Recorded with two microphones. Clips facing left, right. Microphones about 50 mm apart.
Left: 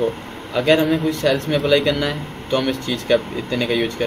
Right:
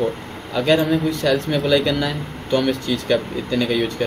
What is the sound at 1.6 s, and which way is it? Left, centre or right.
Speech, centre.